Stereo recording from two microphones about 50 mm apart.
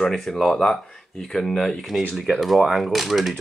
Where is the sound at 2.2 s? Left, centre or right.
Centre.